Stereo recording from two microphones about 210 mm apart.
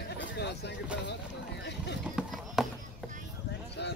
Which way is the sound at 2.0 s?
Centre (ahead or behind).